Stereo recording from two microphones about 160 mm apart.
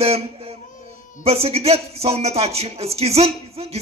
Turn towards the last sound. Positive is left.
turn(degrees=-40)  # may be behind; listen again after turning